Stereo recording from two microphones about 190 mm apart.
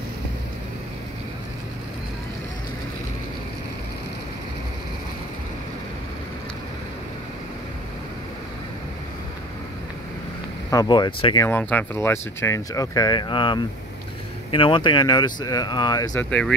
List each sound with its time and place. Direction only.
10.7 s speech: 20° left (ahead or behind)
11.4 s speech: 10° left (ahead or behind)
16.3 s speech: 5° left (ahead or behind)